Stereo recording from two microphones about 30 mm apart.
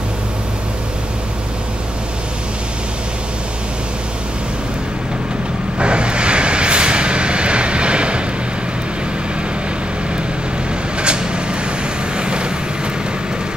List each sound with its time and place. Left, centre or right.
5.8 s vehicle: right
11.0 s vehicle: right